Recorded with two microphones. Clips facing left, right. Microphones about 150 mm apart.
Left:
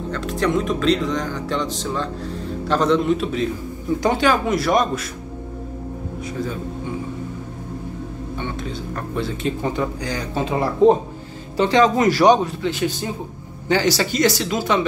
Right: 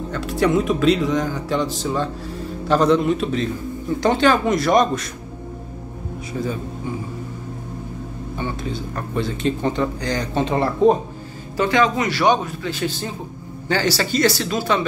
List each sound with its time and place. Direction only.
0.1 s speech: 5° right (ahead or behind)
8.4 s speech: centre (ahead or behind)
11.5 s a man's voice: 30° left (ahead or behind)
12.0 s a man's voice: 40° left (ahead or behind)
12.6 s speech: 15° left (ahead or behind)